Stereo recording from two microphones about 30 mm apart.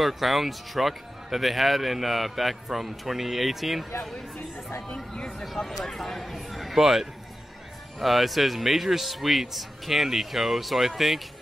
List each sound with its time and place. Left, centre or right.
0.0 s speech: centre
4.8 s speech: left
5.4 s speech: centre